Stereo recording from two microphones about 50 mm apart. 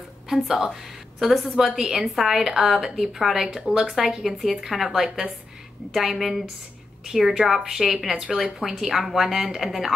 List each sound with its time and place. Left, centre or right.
0.3 s a woman's voice: centre